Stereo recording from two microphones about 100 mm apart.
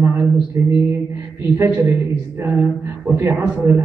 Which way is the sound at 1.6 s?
25° right (ahead or behind).